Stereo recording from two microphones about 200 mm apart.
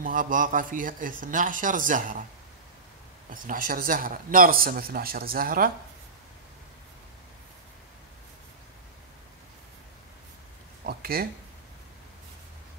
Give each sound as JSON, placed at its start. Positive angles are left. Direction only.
{"t": 0.0, "sound": "a man's voice", "side_deg": -40}
{"t": 3.3, "sound": "speech", "side_deg": -40}
{"t": 10.9, "sound": "speech", "side_deg": -50}